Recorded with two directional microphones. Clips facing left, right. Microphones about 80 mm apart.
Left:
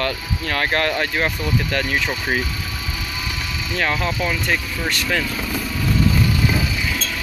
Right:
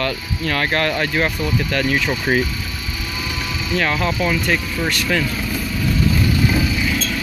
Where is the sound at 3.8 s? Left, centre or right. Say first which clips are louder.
Right 1 dB; left.